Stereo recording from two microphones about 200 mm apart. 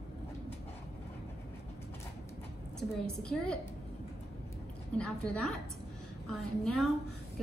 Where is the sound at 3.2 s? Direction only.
5° left (ahead or behind).